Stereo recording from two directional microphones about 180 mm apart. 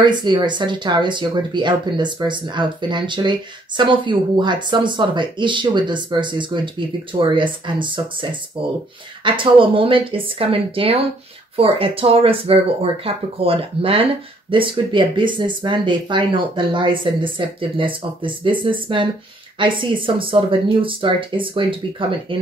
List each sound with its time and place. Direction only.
0.0 s speech: 25° right (ahead or behind)